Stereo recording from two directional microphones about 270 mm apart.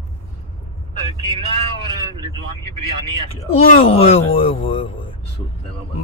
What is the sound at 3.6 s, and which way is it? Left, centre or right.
Speech, left.